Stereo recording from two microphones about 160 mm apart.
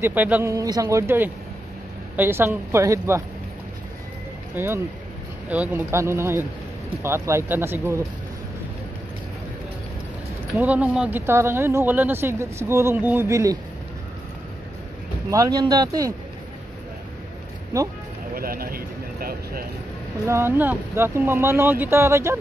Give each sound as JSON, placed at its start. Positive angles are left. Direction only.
{"t": 0.0, "sound": "speech", "side_deg": -10}
{"t": 4.6, "sound": "speech", "side_deg": -15}
{"t": 10.6, "sound": "speech", "side_deg": -10}
{"t": 15.2, "sound": "speech", "side_deg": -20}
{"t": 17.7, "sound": "speech", "side_deg": -20}
{"t": 18.3, "sound": "a sound", "side_deg": -65}
{"t": 20.2, "sound": "speech", "side_deg": -15}